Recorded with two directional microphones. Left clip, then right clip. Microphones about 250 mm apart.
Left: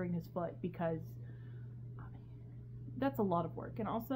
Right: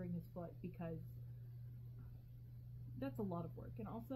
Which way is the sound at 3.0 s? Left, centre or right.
Centre.